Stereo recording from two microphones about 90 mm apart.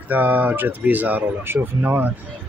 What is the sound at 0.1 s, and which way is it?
Speech, 20° right (ahead or behind).